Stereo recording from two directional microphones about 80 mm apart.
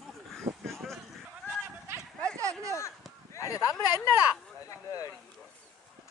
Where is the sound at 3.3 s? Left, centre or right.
Left.